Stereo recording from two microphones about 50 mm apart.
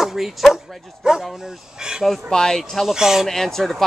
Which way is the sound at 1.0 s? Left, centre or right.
Centre.